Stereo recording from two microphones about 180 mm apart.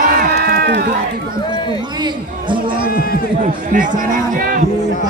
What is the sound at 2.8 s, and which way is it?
Speech, 55° left (ahead or behind).